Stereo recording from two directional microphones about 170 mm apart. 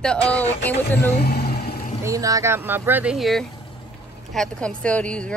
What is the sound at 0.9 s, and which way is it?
Vehicle, 70° left (ahead or behind).